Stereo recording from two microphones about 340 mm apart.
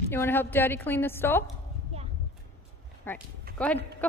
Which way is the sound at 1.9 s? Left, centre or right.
Centre.